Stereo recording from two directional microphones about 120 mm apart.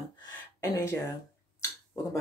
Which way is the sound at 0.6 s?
25° left (ahead or behind).